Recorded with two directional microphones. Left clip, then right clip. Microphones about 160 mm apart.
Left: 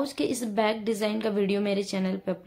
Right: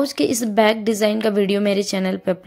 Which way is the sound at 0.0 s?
45° right (ahead or behind).